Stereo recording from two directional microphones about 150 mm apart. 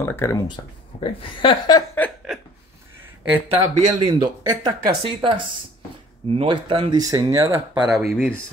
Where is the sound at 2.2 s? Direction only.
5° right (ahead or behind).